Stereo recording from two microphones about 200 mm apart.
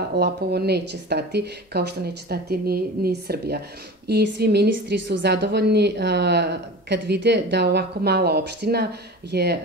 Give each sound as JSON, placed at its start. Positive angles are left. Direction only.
{"t": 0.1, "sound": "a woman's voice", "side_deg": -55}